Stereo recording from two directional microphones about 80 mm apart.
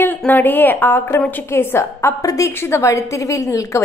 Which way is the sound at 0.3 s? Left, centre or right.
Left.